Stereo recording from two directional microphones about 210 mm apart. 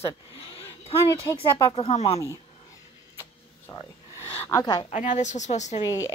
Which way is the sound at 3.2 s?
15° left (ahead or behind).